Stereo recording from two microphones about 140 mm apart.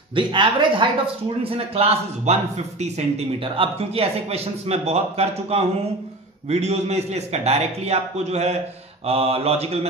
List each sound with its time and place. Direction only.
0.1 s a man's voice: 35° right (ahead or behind)